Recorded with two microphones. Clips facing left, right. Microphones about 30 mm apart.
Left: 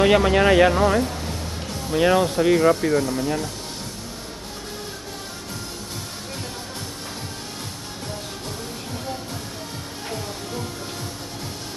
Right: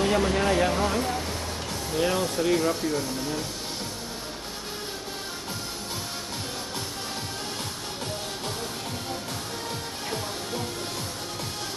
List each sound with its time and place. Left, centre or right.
0.0 s speech: left
0.7 s speech: left
2.6 s speech: left